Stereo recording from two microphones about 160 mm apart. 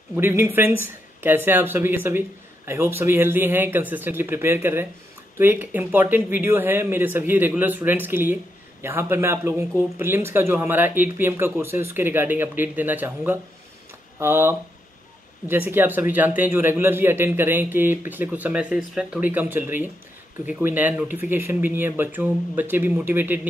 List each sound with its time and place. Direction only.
0.1 s speech: 15° right (ahead or behind)